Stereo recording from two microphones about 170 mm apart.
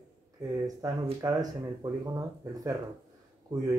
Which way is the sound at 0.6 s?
20° right (ahead or behind).